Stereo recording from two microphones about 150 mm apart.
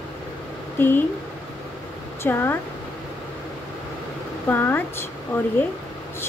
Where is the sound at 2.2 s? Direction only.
15° left (ahead or behind).